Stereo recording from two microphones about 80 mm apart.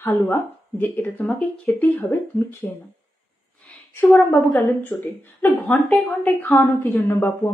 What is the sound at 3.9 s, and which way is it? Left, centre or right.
A woman's voice, left.